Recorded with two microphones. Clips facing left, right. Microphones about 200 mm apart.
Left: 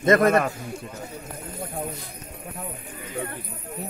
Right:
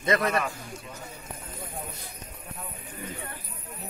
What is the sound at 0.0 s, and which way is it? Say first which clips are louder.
Speech: left 8 dB; 50° left (ahead or behind).